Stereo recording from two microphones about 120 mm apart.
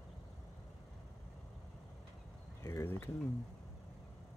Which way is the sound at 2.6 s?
20° left (ahead or behind).